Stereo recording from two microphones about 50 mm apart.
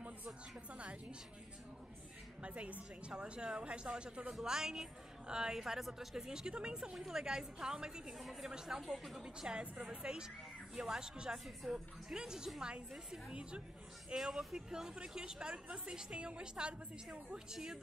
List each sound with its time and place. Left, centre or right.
2.4 s a woman's voice: right; by 9.2 s centre
9.2 s a woman's voice: centre